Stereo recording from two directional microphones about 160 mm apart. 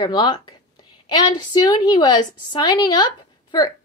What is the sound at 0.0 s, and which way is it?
Speech, 25° left (ahead or behind).